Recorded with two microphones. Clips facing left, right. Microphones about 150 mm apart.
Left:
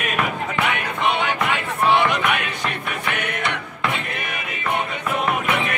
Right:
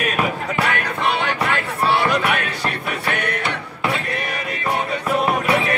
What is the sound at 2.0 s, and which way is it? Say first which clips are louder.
Music: right 2 dB; 35° right (ahead or behind).